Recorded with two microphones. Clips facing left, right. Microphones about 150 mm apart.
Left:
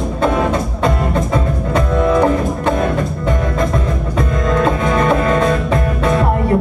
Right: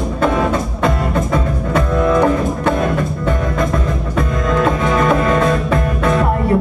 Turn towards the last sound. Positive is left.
turn(degrees=30)  # may be behind; listen again after turning